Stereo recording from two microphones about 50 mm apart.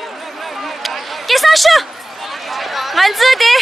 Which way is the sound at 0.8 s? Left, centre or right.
Centre.